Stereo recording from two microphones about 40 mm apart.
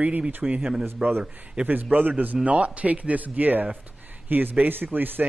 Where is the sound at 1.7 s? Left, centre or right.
Right.